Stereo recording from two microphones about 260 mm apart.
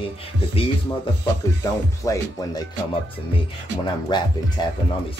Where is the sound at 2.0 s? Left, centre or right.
Centre.